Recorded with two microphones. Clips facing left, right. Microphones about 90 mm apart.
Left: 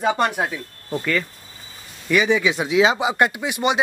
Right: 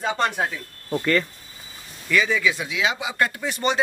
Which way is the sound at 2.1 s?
20° left (ahead or behind).